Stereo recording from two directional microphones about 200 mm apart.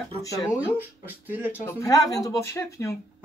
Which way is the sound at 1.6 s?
15° left (ahead or behind).